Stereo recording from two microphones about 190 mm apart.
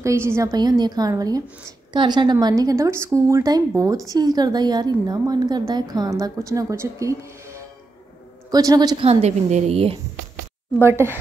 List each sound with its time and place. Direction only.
0.0 s a woman's voice: 15° right (ahead or behind)
9.0 s a woman's voice: 35° right (ahead or behind)
10.8 s a woman's voice: 15° right (ahead or behind)